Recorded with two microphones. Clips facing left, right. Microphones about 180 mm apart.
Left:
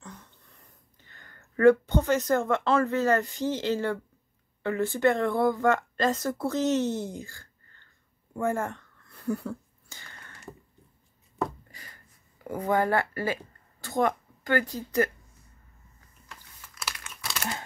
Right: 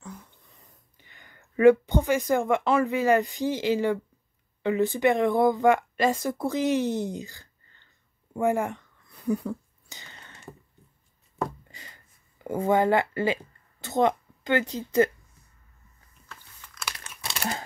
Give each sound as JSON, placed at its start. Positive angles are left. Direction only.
{"t": 0.0, "sound": "speech", "side_deg": -10}
{"t": 11.7, "sound": "a sound", "side_deg": -20}
{"t": 12.4, "sound": "a woman's voice", "side_deg": -25}
{"t": 16.3, "sound": "crunch", "side_deg": 10}
{"t": 16.9, "sound": "crumpling", "side_deg": -30}